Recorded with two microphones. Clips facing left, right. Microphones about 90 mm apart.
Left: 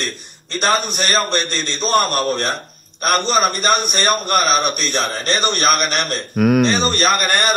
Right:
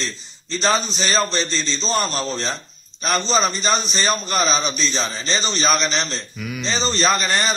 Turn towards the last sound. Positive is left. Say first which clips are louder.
# left 3 dB
turn(degrees=60)  # may be behind; listen again after turning